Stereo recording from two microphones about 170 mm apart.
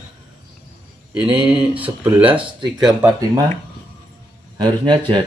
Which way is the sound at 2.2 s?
30° right (ahead or behind).